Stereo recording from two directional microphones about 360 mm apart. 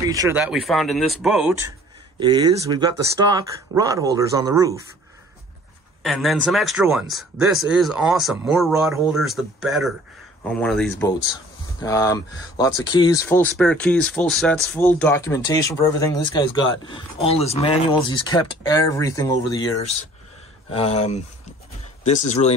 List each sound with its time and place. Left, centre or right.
0.0 s speech: centre
2.1 s speech: centre
6.0 s speech: centre